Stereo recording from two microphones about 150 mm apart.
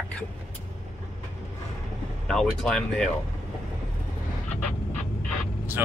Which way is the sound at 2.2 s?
5° left (ahead or behind).